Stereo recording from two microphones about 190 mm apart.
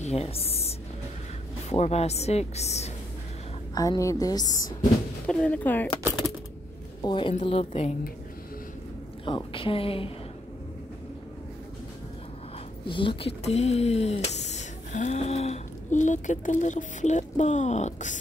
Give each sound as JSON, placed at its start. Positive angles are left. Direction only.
{"t": 0.0, "sound": "a sound", "side_deg": 35}
{"t": 1.7, "sound": "speech", "side_deg": 35}
{"t": 3.7, "sound": "a woman's voice", "side_deg": 20}
{"t": 5.2, "sound": "speech", "side_deg": 5}
{"t": 7.0, "sound": "a woman's voice", "side_deg": 25}
{"t": 9.2, "sound": "a woman's voice", "side_deg": 30}
{"t": 12.8, "sound": "speech", "side_deg": 25}